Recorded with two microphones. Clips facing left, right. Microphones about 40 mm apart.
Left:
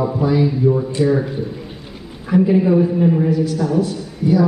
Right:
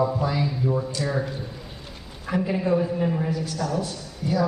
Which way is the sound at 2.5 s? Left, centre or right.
Centre.